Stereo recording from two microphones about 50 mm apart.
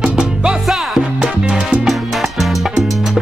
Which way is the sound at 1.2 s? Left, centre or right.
Centre.